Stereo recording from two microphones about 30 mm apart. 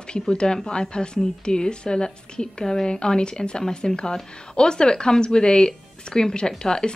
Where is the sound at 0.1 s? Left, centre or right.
Left.